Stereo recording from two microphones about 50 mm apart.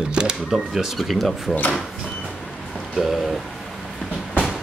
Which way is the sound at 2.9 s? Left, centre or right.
Centre.